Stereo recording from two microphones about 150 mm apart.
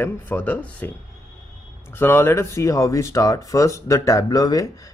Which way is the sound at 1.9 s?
15° left (ahead or behind).